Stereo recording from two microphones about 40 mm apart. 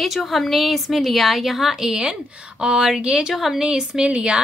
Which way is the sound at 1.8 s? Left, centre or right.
Centre.